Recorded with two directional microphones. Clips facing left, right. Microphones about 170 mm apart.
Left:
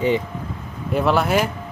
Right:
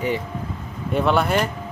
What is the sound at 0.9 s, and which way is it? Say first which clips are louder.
Speech: left 1 dB; centre (ahead or behind).